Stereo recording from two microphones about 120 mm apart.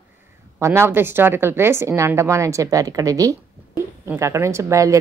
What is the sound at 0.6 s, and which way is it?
Speech, 25° right (ahead or behind).